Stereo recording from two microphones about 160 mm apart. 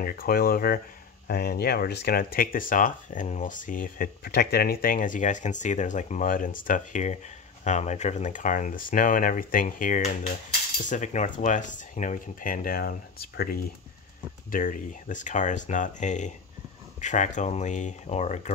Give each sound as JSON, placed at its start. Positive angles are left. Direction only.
{"t": 0.0, "sound": "speech", "side_deg": 65}
{"t": 10.8, "sound": "speech", "side_deg": 50}